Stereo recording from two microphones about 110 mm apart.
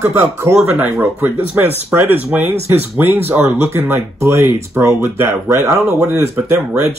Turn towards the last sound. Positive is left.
turn(degrees=-20)  # may be behind; listen again after turning